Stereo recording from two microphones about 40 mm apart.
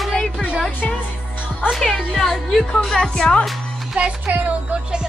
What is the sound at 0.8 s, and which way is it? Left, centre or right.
Speech, left.